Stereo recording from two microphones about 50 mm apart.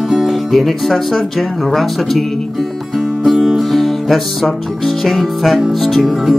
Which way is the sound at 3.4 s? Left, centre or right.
Centre.